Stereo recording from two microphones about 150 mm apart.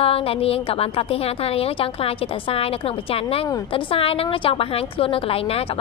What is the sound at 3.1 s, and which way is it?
A woman's voice, 40° left (ahead or behind).